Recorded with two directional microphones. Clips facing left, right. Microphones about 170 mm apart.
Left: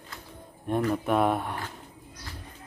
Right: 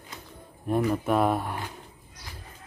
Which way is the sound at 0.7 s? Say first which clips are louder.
Right 1 dB; 5° right (ahead or behind).